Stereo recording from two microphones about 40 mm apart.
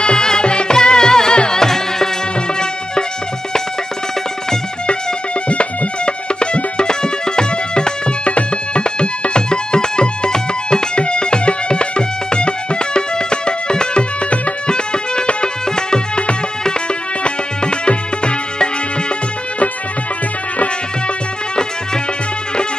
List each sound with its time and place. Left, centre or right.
0.0 s music: centre
5.5 s music: left